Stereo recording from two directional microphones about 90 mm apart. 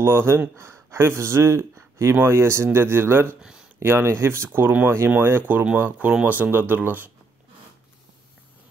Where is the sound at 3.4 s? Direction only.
10° right (ahead or behind).